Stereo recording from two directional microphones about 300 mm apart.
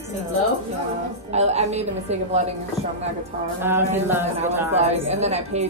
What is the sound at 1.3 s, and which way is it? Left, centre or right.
A woman's voice, right.